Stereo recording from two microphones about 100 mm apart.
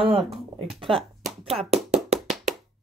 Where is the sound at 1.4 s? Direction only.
80° right.